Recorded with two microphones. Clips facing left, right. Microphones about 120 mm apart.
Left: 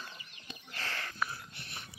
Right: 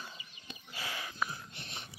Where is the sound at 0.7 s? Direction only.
10° right (ahead or behind).